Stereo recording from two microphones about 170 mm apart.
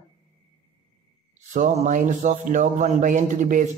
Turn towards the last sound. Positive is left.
turn(degrees=-50)  # may be behind; listen again after turning